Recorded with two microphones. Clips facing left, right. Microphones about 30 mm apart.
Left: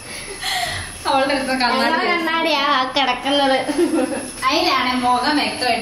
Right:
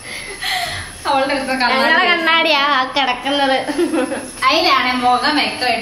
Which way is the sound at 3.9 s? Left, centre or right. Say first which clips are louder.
Right 1 dB; right.